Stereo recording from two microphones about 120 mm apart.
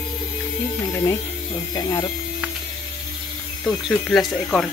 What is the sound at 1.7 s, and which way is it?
Speech, 30° left (ahead or behind).